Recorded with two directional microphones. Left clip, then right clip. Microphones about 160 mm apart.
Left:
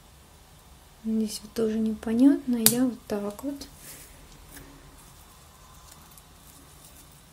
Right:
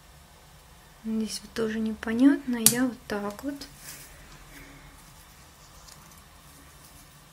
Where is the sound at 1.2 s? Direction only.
20° left (ahead or behind).